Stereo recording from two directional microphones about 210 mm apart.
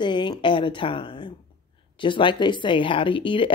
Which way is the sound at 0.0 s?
20° left (ahead or behind).